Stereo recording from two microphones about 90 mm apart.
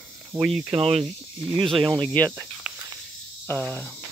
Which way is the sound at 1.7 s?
55° right (ahead or behind).